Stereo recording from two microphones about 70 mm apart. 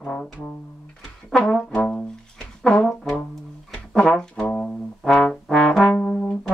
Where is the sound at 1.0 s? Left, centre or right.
Centre.